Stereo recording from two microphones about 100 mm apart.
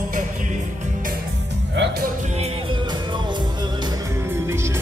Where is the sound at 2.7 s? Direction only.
50° right (ahead or behind).